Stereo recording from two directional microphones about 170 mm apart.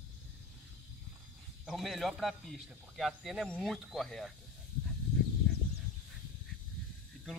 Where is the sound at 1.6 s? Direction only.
Centre (ahead or behind).